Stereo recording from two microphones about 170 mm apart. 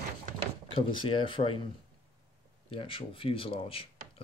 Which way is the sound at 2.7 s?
30° left (ahead or behind).